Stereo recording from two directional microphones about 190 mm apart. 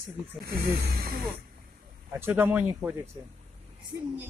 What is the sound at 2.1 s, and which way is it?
Speech, 10° right (ahead or behind).